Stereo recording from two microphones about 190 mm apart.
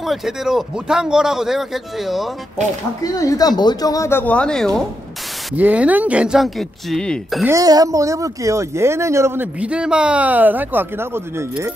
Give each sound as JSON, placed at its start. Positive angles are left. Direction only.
{"t": 0.0, "sound": "speech", "side_deg": 0}
{"t": 3.0, "sound": "speech", "side_deg": 20}
{"t": 5.5, "sound": "speech", "side_deg": -5}
{"t": 7.4, "sound": "speech", "side_deg": -20}